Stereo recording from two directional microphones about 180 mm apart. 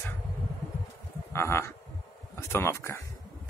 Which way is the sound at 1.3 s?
15° left (ahead or behind).